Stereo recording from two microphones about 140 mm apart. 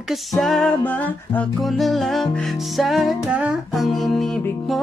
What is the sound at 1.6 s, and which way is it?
Music, centre (ahead or behind).